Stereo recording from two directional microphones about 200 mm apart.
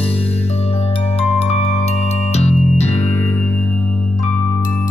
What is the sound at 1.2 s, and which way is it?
Music, 30° left (ahead or behind).